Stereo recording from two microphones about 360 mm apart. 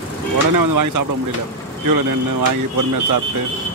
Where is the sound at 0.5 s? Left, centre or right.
Right.